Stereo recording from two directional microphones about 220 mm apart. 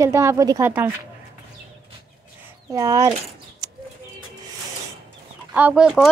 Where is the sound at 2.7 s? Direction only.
15° right (ahead or behind).